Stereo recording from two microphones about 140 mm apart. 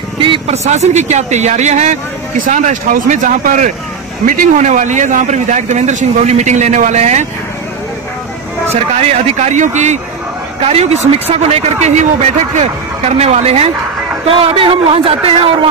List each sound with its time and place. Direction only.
0.2 s a sound: 40° right (ahead or behind)
0.7 s speech: 55° right (ahead or behind)
9.2 s a man's voice: 55° right (ahead or behind)